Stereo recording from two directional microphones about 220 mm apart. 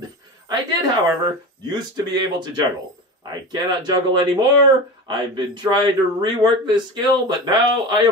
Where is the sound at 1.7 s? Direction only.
20° right (ahead or behind).